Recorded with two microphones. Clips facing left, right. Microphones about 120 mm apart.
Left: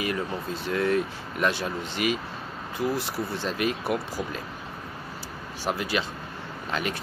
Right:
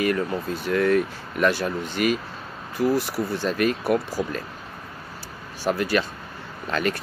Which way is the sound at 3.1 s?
20° left (ahead or behind).